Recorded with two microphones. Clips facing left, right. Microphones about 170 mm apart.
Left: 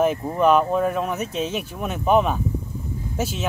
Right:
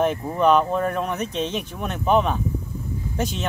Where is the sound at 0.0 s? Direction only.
5° left (ahead or behind).